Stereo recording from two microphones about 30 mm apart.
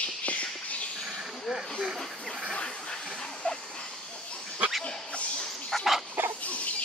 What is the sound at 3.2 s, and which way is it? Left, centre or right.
Dog, left.